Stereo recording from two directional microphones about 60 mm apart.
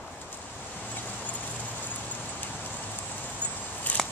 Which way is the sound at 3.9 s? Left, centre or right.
Left.